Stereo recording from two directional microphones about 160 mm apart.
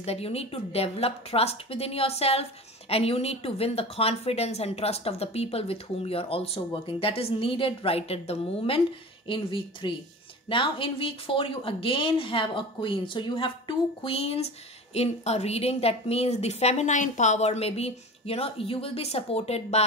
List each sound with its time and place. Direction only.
0.0 s a woman's voice: 40° left (ahead or behind)